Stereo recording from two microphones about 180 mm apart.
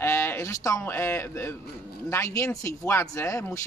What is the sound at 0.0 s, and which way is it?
Speech, 15° left (ahead or behind).